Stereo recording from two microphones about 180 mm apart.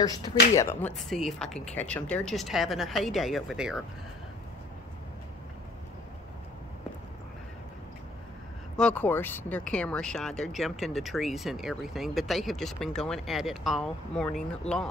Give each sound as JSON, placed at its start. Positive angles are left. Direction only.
{"t": 0.0, "sound": "speech", "side_deg": 20}
{"t": 8.7, "sound": "speech", "side_deg": 5}